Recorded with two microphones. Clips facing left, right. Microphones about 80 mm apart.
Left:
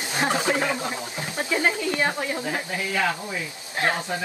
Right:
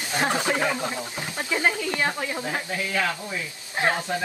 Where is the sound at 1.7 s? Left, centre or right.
Centre.